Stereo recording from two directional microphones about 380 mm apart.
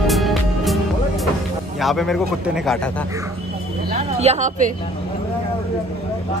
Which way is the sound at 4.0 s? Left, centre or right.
Centre.